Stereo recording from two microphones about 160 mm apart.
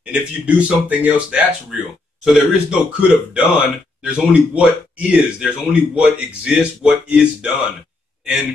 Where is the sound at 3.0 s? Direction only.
5° right (ahead or behind).